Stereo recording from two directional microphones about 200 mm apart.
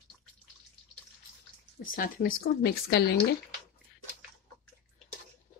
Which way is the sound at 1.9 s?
45° left (ahead or behind).